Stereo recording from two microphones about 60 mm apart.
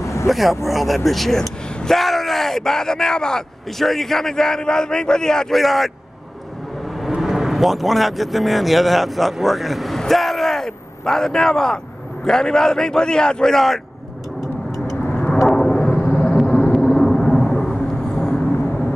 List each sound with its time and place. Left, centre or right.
0.0 s vehicle: left
0.3 s speech: centre
7.0 s speech: centre
15.4 s vehicle: centre